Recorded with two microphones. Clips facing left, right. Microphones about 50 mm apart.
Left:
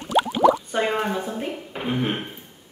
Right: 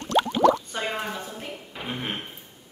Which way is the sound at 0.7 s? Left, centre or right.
Centre.